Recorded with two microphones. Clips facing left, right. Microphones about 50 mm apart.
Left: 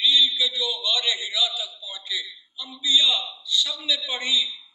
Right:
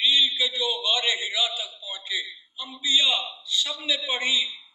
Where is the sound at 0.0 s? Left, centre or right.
Right.